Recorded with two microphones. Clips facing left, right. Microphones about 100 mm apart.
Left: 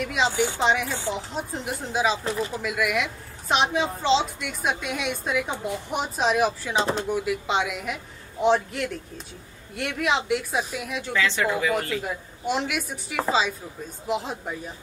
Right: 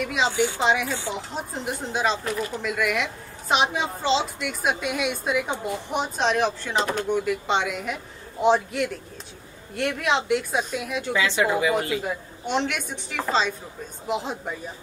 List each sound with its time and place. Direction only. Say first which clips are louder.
0.0 s a woman's voice: right 1 dB; centre (ahead or behind)
2.2 s speech: even; 25° left (ahead or behind)
2.5 s a woman's voice: even; 5° left (ahead or behind)
11.1 s speech: right 1 dB; 15° right (ahead or behind)
12.0 s a woman's voice: right 1 dB; 5° left (ahead or behind)